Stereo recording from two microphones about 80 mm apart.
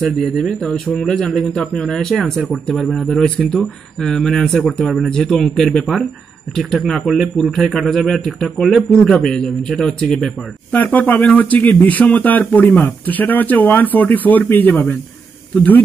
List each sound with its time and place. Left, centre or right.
0.0 s speech: centre
10.7 s speech: centre